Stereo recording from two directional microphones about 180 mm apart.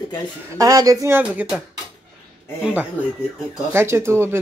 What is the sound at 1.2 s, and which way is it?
Speech, 5° right (ahead or behind).